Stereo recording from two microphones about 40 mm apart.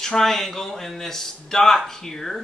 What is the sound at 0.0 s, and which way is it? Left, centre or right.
Speech, centre.